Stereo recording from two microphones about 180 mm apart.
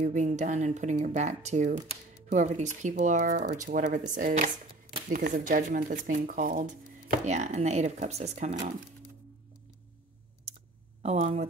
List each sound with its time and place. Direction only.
0.0 s speech: 45° right (ahead or behind)
11.0 s speech: 35° right (ahead or behind)